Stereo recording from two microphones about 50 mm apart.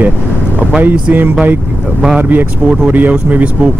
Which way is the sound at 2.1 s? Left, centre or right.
Right.